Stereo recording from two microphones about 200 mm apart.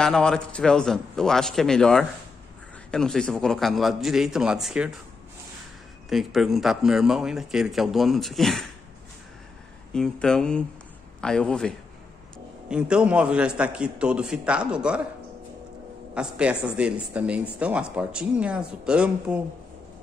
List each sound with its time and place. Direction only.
0.0 s speech: 5° left (ahead or behind)
6.0 s speech: centre (ahead or behind)
9.9 s speech: 5° left (ahead or behind)
16.2 s speech: 5° right (ahead or behind)